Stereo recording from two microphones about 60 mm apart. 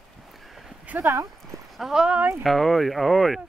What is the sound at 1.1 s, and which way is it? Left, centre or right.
Speech, right.